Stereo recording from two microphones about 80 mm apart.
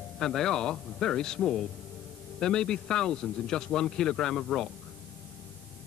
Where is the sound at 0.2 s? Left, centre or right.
Centre.